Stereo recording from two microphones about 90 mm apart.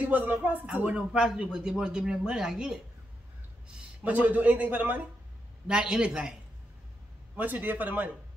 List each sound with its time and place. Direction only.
0.0 s speech: 20° right (ahead or behind)
5.7 s speech: 10° right (ahead or behind)
7.3 s speech: 20° right (ahead or behind)